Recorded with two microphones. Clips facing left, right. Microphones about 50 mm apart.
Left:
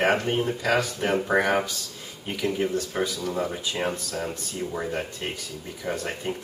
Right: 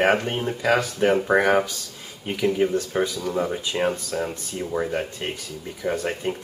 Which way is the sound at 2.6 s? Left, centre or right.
Centre.